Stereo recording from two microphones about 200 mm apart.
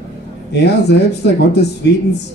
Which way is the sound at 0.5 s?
55° left (ahead or behind).